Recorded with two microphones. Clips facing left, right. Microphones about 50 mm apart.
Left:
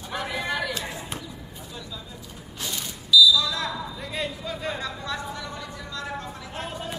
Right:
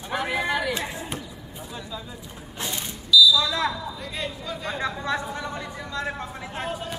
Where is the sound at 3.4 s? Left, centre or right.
Right.